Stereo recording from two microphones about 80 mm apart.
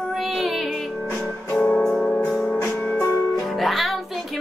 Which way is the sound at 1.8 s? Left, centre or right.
Centre.